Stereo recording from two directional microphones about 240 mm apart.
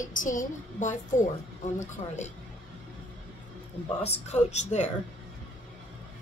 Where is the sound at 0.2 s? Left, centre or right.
Left.